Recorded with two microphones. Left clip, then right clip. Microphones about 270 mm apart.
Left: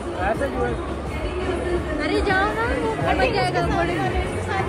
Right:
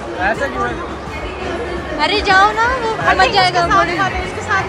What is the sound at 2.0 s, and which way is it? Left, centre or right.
Speech, centre.